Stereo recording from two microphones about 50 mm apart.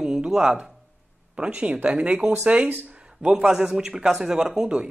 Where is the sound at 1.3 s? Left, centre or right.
Centre.